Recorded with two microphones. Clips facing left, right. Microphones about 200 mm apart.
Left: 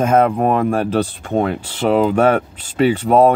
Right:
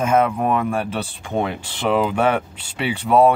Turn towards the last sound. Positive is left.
turn(degrees=40)  # may be behind; listen again after turning